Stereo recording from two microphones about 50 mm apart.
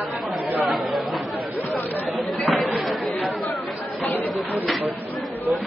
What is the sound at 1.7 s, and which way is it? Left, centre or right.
Chatter, left.